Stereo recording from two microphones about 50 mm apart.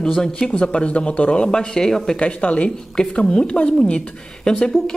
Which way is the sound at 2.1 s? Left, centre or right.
Left.